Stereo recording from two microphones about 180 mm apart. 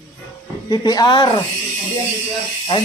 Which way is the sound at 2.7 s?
30° left (ahead or behind).